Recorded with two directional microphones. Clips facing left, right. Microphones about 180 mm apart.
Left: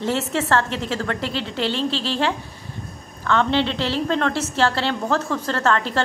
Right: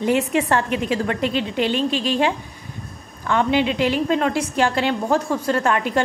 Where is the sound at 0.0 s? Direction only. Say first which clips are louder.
Right 4 dB; 15° right (ahead or behind).